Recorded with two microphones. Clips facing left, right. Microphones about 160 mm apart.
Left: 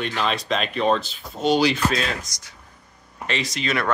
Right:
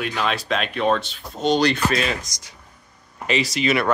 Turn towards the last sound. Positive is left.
turn(degrees=-5)  # may be behind; listen again after turning